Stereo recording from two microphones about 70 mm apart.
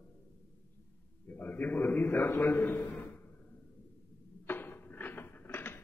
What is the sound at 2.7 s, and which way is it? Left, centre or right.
Speech, left.